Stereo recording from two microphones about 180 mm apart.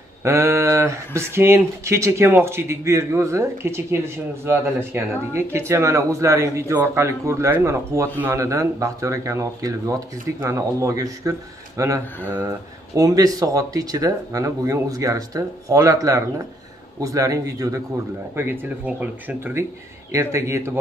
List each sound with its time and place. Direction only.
0.2 s speech: 15° right (ahead or behind)